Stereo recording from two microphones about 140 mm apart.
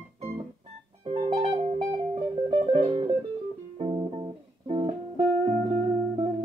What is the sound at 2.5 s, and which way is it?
Music, 35° right (ahead or behind).